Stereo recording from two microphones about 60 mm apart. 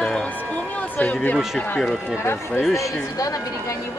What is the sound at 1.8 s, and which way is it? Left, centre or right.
Speech, centre.